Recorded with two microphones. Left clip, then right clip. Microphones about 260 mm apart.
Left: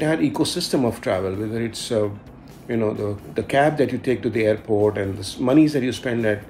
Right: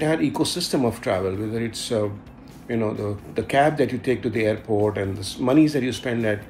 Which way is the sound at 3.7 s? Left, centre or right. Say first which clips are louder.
Left 1 dB; centre.